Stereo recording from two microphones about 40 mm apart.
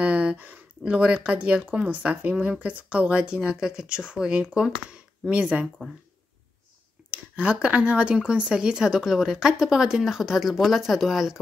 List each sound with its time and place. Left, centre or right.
0.0 s a sound: right
0.9 s speech: right
7.1 s speech: right; by 11.3 s centre